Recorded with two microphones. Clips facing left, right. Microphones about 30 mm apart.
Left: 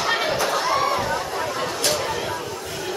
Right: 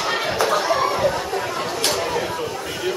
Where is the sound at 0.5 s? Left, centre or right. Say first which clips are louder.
Right 2 dB; centre.